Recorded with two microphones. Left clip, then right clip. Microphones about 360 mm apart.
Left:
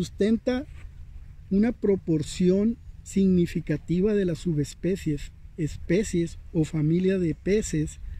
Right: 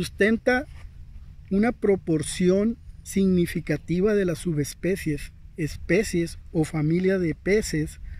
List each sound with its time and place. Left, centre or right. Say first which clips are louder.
0.0 s speech: right 4 dB; right